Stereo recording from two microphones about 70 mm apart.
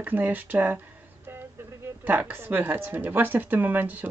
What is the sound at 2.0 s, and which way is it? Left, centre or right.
Speech, right.